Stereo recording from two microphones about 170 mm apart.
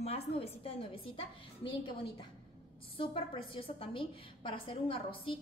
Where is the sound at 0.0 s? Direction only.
35° left (ahead or behind).